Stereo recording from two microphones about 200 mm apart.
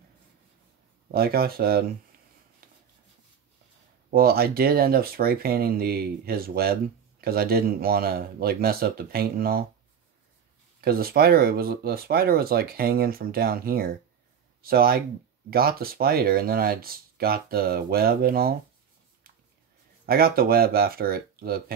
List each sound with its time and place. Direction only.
1.1 s speech: 50° right (ahead or behind)
4.1 s speech: 50° right (ahead or behind)
10.8 s speech: 50° right (ahead or behind)
20.1 s speech: 50° right (ahead or behind)